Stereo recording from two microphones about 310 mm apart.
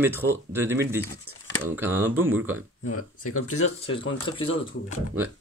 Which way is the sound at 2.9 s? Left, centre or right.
Left.